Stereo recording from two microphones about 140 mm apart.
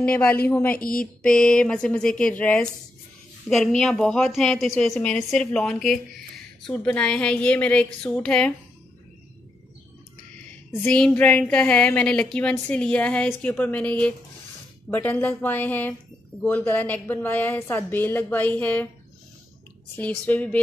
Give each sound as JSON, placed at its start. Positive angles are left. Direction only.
{"t": 0.0, "sound": "a woman's voice", "side_deg": 10}
{"t": 0.7, "sound": "a sound", "side_deg": 90}
{"t": 1.2, "sound": "a woman's voice", "side_deg": 5}
{"t": 10.7, "sound": "a woman's voice", "side_deg": 10}
{"t": 20.0, "sound": "a woman's voice", "side_deg": 10}